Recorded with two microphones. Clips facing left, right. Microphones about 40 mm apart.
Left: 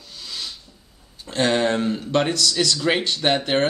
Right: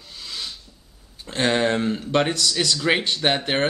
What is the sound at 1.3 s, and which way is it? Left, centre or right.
Speech, centre.